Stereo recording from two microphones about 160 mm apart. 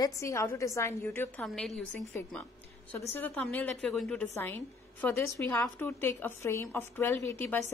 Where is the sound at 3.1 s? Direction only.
10° left (ahead or behind).